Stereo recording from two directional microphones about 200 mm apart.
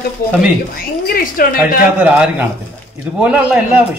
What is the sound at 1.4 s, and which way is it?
Speech, 45° left (ahead or behind).